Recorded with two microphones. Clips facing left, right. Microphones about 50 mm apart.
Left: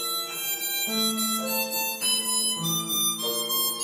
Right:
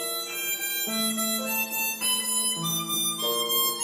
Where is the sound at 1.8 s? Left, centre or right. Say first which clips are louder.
Even; right.